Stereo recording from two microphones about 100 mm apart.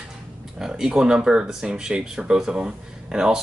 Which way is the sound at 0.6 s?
5° right (ahead or behind).